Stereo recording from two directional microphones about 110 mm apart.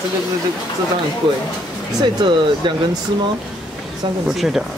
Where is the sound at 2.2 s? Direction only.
45° right (ahead or behind).